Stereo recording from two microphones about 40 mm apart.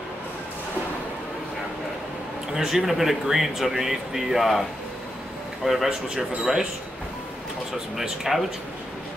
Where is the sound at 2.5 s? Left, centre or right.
Centre.